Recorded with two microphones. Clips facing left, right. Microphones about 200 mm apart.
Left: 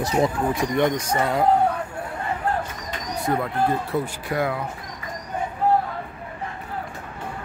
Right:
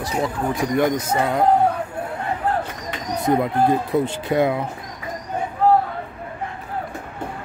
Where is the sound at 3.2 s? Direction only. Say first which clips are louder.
Right 5 dB; 15° right (ahead or behind).